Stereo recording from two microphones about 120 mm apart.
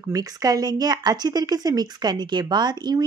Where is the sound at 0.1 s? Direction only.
30° right (ahead or behind).